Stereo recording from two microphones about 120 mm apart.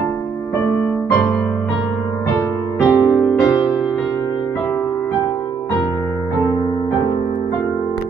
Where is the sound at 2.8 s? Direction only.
25° left (ahead or behind).